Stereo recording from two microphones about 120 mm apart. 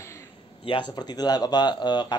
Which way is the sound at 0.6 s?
40° left (ahead or behind).